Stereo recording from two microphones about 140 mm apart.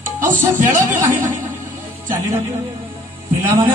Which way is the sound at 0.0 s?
65° right (ahead or behind).